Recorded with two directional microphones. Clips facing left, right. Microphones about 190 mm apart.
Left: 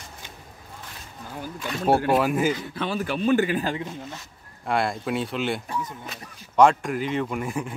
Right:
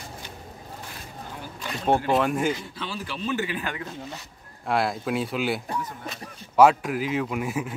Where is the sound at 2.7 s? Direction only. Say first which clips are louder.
Left 7 dB; 55° left (ahead or behind).